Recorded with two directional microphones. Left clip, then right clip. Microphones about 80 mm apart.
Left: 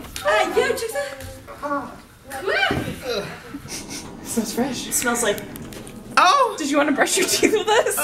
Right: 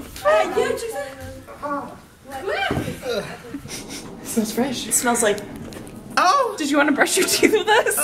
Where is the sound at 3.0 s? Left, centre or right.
Centre.